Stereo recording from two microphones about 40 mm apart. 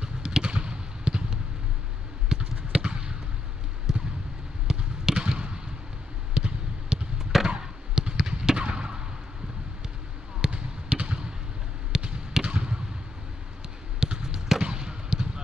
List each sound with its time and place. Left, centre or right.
0.0 s a sound: right
2.7 s fireworks: right
3.9 s basketball bounce: centre
6.3 s a sound: right
7.4 s fireworks: right
10.4 s basketball bounce: right
13.9 s fireworks: centre